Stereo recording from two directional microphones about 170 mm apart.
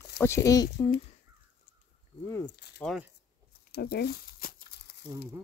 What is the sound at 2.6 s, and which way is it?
Speech, 75° left (ahead or behind).